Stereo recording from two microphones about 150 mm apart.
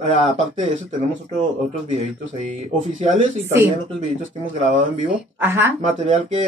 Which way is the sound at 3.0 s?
55° right (ahead or behind).